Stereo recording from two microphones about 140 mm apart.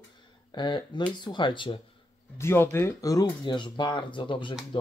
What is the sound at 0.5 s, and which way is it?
Speech, 35° left (ahead or behind).